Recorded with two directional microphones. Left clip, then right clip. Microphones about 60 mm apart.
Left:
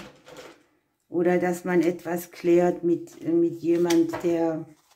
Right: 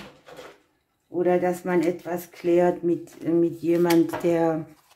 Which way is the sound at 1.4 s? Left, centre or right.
Left.